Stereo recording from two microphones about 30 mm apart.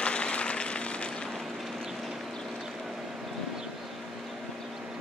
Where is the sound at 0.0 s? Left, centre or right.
Left.